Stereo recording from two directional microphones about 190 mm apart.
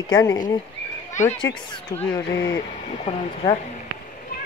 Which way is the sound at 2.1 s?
20° left (ahead or behind).